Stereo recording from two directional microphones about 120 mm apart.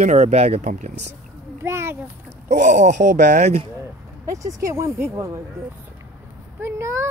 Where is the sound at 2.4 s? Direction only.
90° right; by 3.6 s 65° right (ahead or behind).